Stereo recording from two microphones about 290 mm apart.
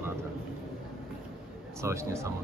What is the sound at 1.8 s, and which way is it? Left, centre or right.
Speech, centre.